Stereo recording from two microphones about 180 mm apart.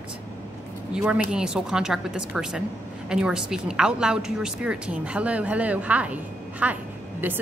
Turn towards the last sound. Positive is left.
turn(degrees=-10)  # may be behind; listen again after turning